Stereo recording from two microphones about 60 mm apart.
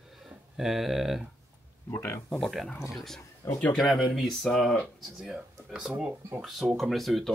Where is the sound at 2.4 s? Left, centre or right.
Centre.